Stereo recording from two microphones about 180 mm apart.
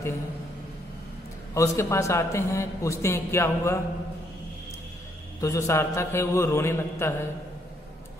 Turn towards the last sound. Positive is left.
turn(degrees=15)  # may be behind; listen again after turning